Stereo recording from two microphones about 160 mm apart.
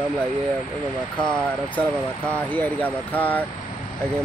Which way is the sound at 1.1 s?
5° left (ahead or behind).